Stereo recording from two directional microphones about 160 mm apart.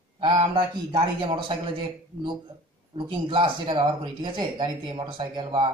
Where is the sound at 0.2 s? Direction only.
25° right (ahead or behind).